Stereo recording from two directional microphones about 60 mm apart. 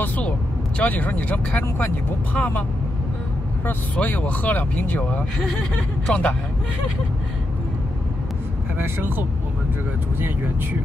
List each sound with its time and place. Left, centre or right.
0.7 s speech: left
3.6 s speech: left
8.7 s speech: right